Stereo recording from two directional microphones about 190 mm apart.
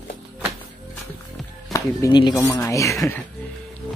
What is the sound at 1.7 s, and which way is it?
Speech, 20° left (ahead or behind).